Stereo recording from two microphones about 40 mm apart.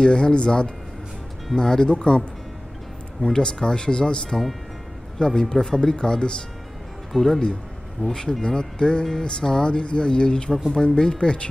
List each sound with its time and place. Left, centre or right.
0.0 s speech: left
7.1 s speech: centre
8.0 s speech: centre